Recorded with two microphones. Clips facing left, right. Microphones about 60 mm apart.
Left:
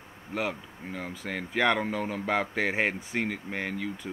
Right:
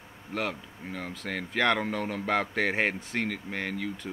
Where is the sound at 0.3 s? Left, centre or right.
Centre.